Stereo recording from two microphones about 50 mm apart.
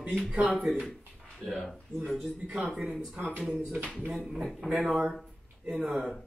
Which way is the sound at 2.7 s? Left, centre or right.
Centre.